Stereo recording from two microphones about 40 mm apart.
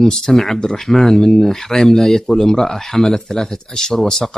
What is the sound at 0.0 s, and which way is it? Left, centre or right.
Speech, centre.